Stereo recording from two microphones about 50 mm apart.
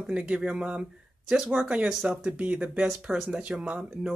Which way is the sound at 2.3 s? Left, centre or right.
Right.